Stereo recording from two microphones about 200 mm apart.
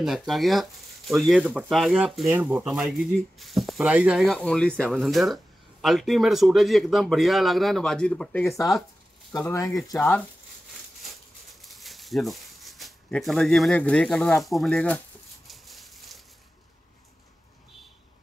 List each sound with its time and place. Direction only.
0.3 s speech: centre (ahead or behind)
9.3 s speech: 15° left (ahead or behind)
11.6 s speech: centre (ahead or behind)
15.4 s a sound: centre (ahead or behind)